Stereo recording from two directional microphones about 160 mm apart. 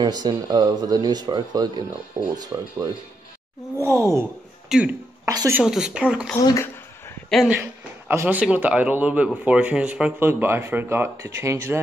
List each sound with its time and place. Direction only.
0.0 s speech: 25° right (ahead or behind)
4.6 s speech: 5° right (ahead or behind)
5.2 s speech: 20° right (ahead or behind)
5.6 s speech: 5° right (ahead or behind)
6.3 s speech: 20° left (ahead or behind)
8.1 s speech: 15° right (ahead or behind)